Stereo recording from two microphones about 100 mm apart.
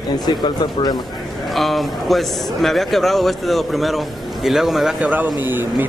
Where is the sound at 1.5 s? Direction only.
Centre (ahead or behind).